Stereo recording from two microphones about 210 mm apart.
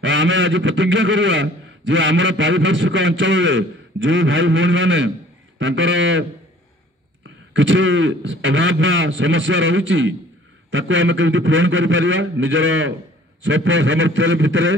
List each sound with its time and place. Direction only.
0.0 s a man's voice: 60° right (ahead or behind)
7.5 s a man's voice: 65° right (ahead or behind)